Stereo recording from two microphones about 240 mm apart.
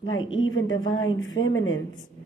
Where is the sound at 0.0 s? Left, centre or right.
Left.